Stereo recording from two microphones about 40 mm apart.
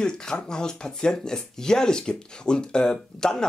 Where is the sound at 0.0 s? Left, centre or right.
Centre.